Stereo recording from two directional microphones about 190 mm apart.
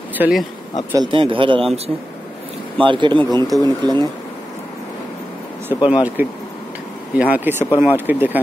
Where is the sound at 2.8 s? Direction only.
25° right (ahead or behind).